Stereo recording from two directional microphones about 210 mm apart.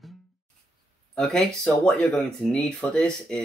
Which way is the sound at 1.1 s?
5° left (ahead or behind).